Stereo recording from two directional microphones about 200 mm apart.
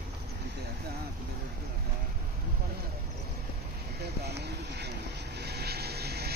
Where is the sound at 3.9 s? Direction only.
55° right (ahead or behind).